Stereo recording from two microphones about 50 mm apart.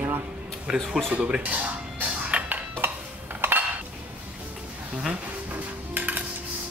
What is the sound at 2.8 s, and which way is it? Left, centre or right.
Dishes, right.